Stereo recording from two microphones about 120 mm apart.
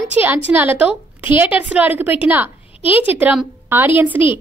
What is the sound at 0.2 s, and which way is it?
A woman's voice, 15° right (ahead or behind).